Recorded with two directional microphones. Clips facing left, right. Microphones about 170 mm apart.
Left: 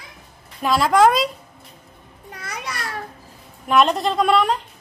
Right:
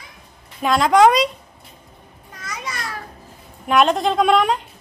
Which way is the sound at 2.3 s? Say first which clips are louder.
Even; 60° left (ahead or behind).